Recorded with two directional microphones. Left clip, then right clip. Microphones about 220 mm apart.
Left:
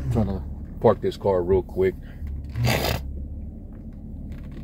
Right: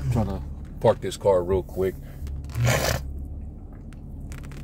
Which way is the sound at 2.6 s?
10° right (ahead or behind).